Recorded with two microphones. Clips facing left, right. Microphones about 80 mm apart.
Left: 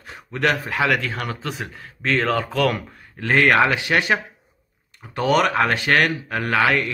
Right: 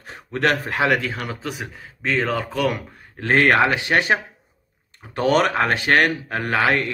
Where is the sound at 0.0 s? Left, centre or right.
Right.